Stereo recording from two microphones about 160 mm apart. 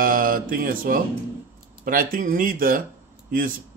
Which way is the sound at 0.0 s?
60° right (ahead or behind).